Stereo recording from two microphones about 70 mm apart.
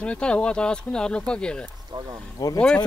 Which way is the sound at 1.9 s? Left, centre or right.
Right.